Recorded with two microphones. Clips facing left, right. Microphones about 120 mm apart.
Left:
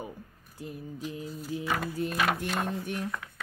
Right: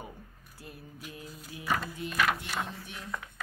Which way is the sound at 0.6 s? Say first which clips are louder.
Left 9 dB; 20° left (ahead or behind).